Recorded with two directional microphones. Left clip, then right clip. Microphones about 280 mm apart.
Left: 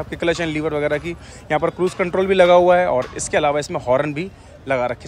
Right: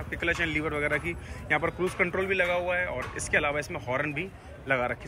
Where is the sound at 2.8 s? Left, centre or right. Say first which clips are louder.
Left 11 dB; centre.